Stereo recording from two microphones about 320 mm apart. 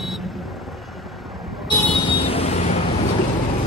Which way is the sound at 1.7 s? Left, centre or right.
Centre.